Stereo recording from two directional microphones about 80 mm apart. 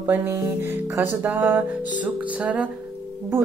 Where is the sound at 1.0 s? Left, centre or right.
Right.